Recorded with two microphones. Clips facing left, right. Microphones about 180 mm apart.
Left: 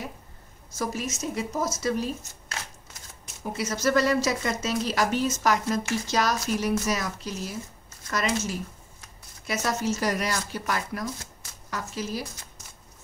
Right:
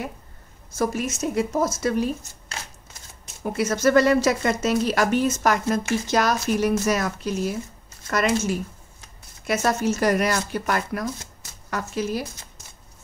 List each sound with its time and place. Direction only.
0.7 s speech: 55° right (ahead or behind)
3.5 s speech: 55° right (ahead or behind)